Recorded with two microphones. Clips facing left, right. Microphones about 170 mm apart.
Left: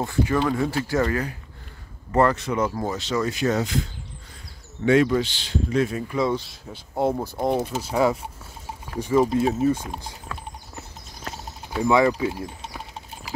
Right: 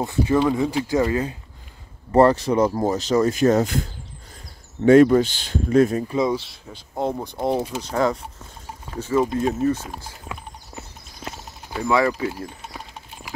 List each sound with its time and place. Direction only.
0.0 s speech: 20° right (ahead or behind)
2.1 s speech: 35° right (ahead or behind)
4.8 s speech: 45° right (ahead or behind)
6.0 s speech: 20° right (ahead or behind)
6.3 s speech: centre (ahead or behind)
11.8 s speech: 20° left (ahead or behind)